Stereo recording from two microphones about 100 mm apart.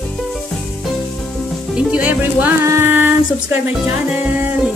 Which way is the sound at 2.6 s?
25° right (ahead or behind).